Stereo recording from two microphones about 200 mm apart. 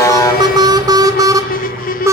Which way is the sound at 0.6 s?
20° right (ahead or behind).